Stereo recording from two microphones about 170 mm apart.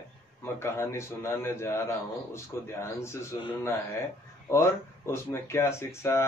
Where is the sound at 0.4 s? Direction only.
15° left (ahead or behind).